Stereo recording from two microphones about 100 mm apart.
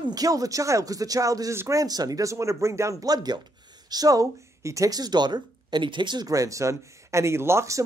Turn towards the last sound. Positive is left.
turn(degrees=-30)  # may be behind; listen again after turning